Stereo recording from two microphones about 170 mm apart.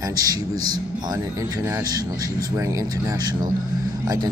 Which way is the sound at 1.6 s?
20° right (ahead or behind).